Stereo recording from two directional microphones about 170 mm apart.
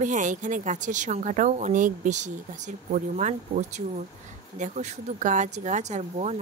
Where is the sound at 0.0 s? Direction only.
45° right (ahead or behind).